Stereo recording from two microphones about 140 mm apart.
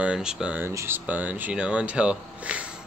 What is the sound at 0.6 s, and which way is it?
Speech, 15° right (ahead or behind).